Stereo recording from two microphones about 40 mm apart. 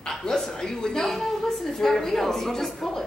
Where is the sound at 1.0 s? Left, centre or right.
Centre.